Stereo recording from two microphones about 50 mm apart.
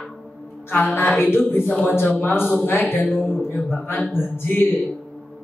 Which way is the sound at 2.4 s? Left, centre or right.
Centre.